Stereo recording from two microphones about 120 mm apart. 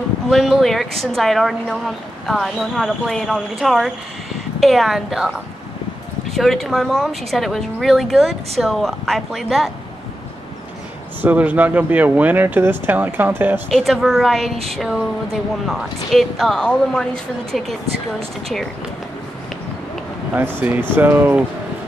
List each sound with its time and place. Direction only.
0.3 s speech: centre (ahead or behind)
6.3 s speech: centre (ahead or behind)
11.1 s speech: 15° right (ahead or behind)
13.7 s speech: centre (ahead or behind)
20.9 s speech: 15° right (ahead or behind)